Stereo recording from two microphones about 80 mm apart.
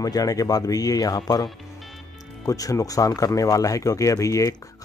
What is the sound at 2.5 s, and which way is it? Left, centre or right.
Speech, left.